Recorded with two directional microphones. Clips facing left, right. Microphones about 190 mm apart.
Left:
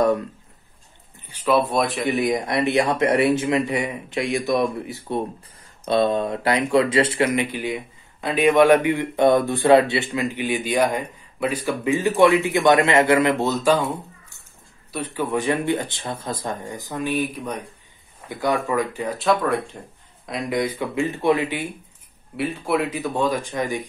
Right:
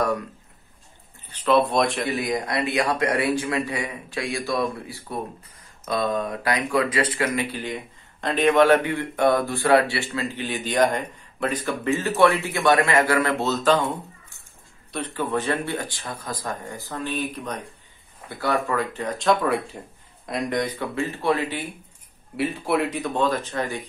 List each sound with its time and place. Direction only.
1.2 s speech: 10° left (ahead or behind)
2.0 s speech: 20° left (ahead or behind)
7.3 s speech: 10° left (ahead or behind)
22.4 s speech: centre (ahead or behind)